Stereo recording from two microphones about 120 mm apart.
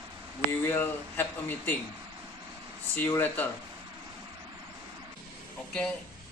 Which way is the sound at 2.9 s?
15° left (ahead or behind).